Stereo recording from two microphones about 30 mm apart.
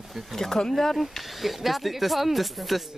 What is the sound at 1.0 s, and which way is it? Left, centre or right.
Speech, centre.